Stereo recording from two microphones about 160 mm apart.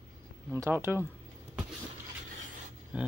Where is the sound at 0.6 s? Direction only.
15° right (ahead or behind).